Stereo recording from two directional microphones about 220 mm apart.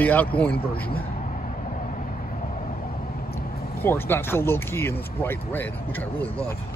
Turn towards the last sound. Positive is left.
turn(degrees=10)  # may be behind; listen again after turning